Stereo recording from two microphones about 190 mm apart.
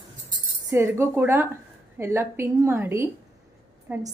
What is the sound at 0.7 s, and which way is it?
Speech, 15° right (ahead or behind).